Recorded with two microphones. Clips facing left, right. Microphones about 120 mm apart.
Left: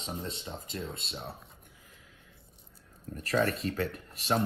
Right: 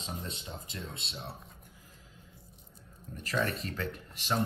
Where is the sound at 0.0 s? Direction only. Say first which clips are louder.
Left 3 dB; 30° left (ahead or behind).